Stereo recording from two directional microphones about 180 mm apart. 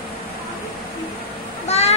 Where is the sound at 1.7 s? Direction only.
35° left (ahead or behind).